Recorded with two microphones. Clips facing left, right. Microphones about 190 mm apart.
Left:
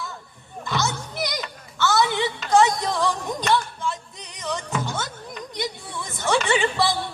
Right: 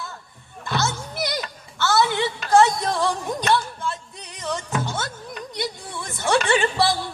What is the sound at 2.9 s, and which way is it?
Music, 15° right (ahead or behind).